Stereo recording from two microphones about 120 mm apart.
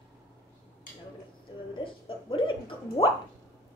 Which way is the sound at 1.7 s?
45° left (ahead or behind).